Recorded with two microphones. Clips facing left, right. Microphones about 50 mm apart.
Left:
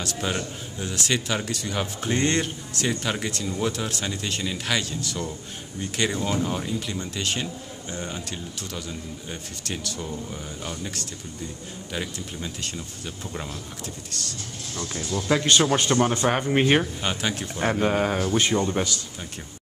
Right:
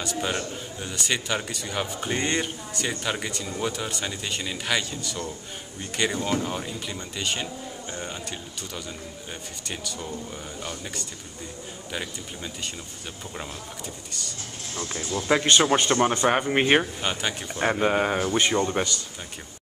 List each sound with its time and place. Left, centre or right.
0.0 s a man's voice: centre
14.1 s a man's voice: centre
14.8 s speech: right; by 18.9 s centre